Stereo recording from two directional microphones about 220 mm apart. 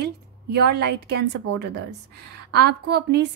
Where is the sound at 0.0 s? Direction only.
50° right (ahead or behind).